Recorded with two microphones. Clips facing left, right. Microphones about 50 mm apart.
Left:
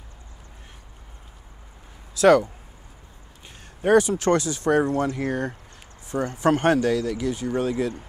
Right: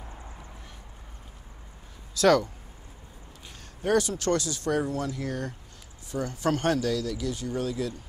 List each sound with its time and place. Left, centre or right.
2.1 s speech: left
3.8 s speech: left